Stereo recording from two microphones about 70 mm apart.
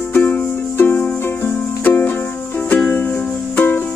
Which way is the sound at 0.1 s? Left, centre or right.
Left.